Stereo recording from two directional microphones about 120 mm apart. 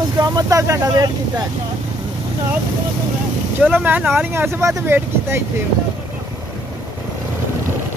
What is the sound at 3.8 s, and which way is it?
Speech, 15° right (ahead or behind).